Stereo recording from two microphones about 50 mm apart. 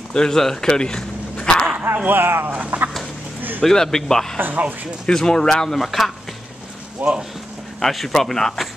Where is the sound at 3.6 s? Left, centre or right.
Centre.